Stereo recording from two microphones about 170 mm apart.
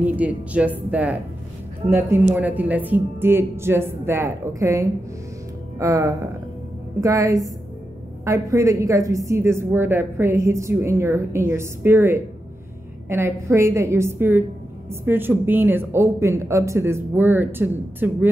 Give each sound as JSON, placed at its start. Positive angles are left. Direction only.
{"t": 0.0, "sound": "a woman's voice", "side_deg": -10}